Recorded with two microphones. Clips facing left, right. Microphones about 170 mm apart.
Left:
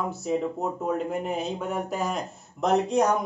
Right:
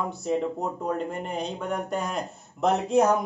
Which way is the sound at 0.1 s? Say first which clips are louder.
Even; centre (ahead or behind).